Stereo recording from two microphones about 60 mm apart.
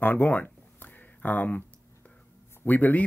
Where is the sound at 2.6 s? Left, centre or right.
Left.